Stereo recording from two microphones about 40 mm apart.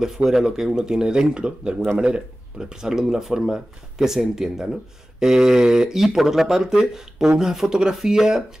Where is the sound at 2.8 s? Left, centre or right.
Centre.